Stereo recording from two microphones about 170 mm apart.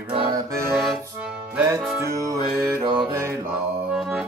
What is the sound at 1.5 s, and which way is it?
Music, 15° right (ahead or behind).